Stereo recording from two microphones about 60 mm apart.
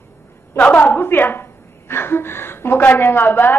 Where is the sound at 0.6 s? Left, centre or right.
Left.